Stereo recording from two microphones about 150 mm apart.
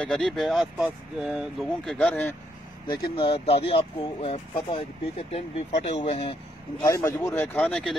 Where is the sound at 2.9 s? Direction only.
35° left (ahead or behind).